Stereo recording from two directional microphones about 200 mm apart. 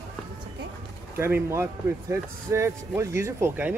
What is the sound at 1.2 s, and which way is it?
Speech, 15° right (ahead or behind).